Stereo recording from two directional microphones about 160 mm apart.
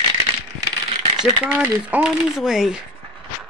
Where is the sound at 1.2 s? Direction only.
5° right (ahead or behind).